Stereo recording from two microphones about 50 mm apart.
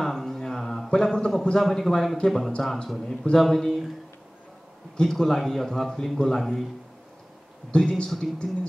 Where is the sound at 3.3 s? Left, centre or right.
Centre.